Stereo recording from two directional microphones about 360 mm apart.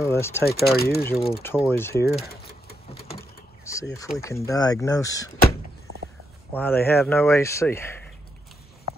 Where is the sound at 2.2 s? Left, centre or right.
Left.